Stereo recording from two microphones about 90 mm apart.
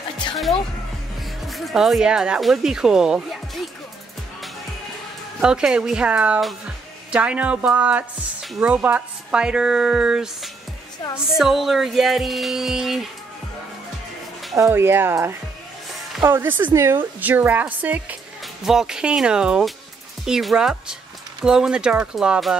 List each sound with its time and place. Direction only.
1.5 s speech: centre (ahead or behind)
5.4 s speech: 10° right (ahead or behind)
14.7 s a woman's voice: 25° right (ahead or behind)
17.2 s a woman's voice: 20° right (ahead or behind)
18.6 s speech: 5° right (ahead or behind)